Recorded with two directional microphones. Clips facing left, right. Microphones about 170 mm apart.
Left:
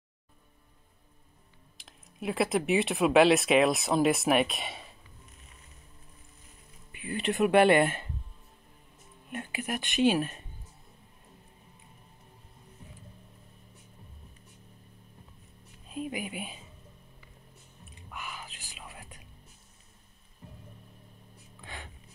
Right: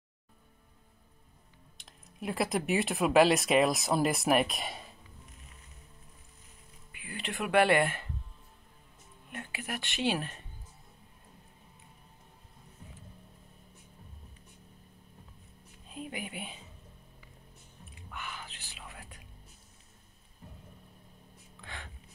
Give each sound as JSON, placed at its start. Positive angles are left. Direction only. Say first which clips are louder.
{"t": 1.8, "sound": "speech", "louder": "left 2 dB", "side_deg": 0}
{"t": 6.9, "sound": "speech", "louder": "left 9 dB", "side_deg": 25}
{"t": 9.3, "sound": "speech", "louder": "left 5 dB", "side_deg": 15}
{"t": 15.9, "sound": "speech", "louder": "left 5 dB", "side_deg": 15}
{"t": 18.1, "sound": "whispering", "louder": "left 1 dB", "side_deg": 10}
{"t": 21.5, "sound": "a sound", "louder": "left 1 dB", "side_deg": 15}